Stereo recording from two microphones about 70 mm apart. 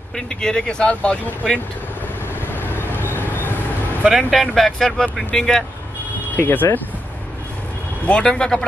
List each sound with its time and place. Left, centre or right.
0.1 s speech: centre
2.5 s vehicle: left
4.0 s speech: centre
4.3 s speech: centre
6.3 s speech: left
8.0 s speech: centre